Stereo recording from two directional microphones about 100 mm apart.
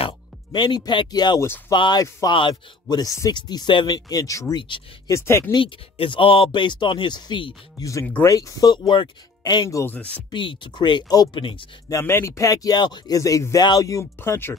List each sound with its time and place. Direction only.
0.0 s speech: 50° left (ahead or behind)
3.0 s speech: 35° left (ahead or behind)
3.3 s speech: 45° left (ahead or behind)
4.6 s speech: 55° left (ahead or behind)
5.0 s speech: 30° left (ahead or behind)
5.5 s speech: 55° left (ahead or behind)
7.8 s speech: 30° left (ahead or behind)
10.3 s speech: 55° left (ahead or behind)
11.9 s speech: 25° left (ahead or behind)